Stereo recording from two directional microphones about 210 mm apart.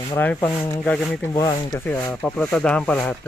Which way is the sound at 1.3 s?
20° left (ahead or behind).